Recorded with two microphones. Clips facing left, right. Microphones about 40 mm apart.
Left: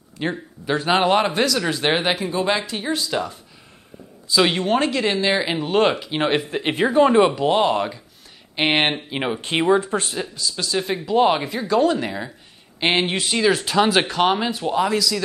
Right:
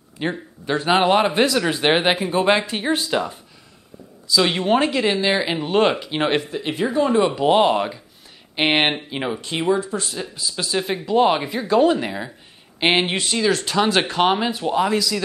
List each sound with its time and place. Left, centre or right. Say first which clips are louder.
0.2 s speech: even; centre
1.3 s speech: right 2 dB; right
3.1 s speech: right 2 dB; centre
4.5 s speech: right 1 dB; centre
6.5 s speech: left 3 dB; left
7.3 s speech: right 2 dB; centre
9.1 s speech: left 1 dB; centre
9.4 s speech: left 4 dB; left
10.3 s speech: right 2 dB; centre
13.3 s speech: left 1 dB; centre